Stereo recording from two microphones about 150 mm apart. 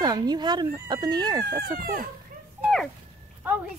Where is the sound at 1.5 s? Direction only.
80° right.